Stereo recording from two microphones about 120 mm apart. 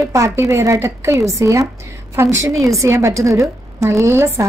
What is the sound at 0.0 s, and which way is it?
A woman's voice, 25° right (ahead or behind).